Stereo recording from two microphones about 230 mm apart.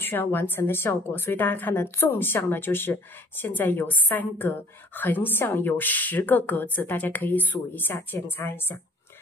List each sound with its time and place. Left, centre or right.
0.0 s a woman's voice: centre